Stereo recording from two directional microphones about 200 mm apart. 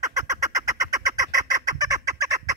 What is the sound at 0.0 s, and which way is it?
Fowl, 15° right (ahead or behind).